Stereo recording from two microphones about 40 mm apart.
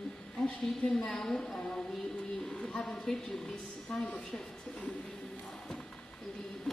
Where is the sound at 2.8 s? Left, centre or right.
Centre.